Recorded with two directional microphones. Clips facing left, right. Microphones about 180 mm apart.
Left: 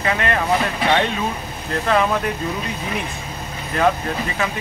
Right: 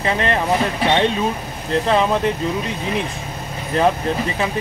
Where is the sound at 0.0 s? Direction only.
30° right (ahead or behind).